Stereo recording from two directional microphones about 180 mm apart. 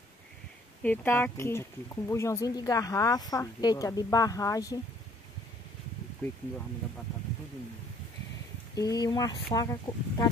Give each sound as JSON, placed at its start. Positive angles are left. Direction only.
{"t": 0.8, "sound": "speech", "side_deg": 10}
{"t": 8.7, "sound": "speech", "side_deg": 20}